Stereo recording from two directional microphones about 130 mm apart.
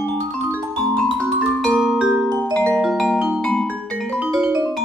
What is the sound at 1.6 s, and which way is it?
Music, centre (ahead or behind).